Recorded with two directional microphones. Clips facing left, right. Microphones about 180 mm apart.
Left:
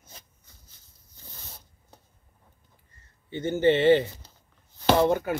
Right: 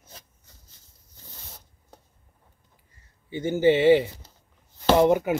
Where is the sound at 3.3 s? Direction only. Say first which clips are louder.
Right 2 dB; 10° right (ahead or behind).